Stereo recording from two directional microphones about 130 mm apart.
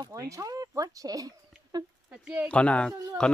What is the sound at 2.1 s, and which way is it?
Speech, 5° right (ahead or behind).